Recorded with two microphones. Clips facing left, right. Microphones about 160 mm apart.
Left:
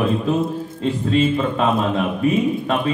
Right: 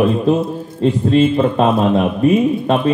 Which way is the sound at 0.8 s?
35° right (ahead or behind).